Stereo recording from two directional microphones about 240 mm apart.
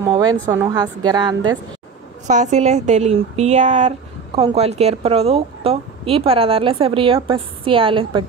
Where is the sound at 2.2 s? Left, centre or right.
Right.